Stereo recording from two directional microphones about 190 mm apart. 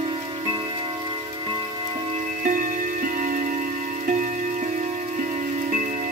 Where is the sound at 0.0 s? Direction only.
25° right (ahead or behind).